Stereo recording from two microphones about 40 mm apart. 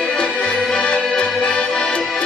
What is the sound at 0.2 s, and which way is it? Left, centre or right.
Accordion, left.